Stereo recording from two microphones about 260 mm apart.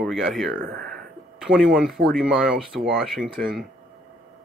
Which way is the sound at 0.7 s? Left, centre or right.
Right.